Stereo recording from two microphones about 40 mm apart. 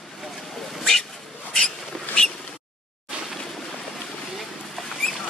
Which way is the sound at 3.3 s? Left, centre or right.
Centre.